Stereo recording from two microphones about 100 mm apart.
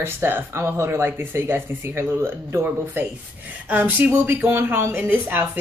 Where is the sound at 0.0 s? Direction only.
20° right (ahead or behind).